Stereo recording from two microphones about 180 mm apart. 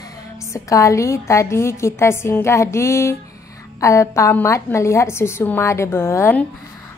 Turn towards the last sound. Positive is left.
turn(degrees=10)  # may be behind; listen again after turning